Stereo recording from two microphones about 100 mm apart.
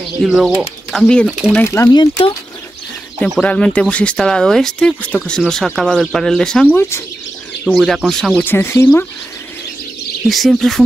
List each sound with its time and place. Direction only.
0.2 s speech: 5° right (ahead or behind)
1.0 s speech: 10° left (ahead or behind)
1.6 s speech: 25° left (ahead or behind)
1.9 s speech: 45° left (ahead or behind)
3.3 s speech: 10° left (ahead or behind)
6.7 s speech: 25° left (ahead or behind)
7.7 s speech: centre (ahead or behind)
8.5 s speech: 20° left (ahead or behind)
10.2 s speech: centre (ahead or behind)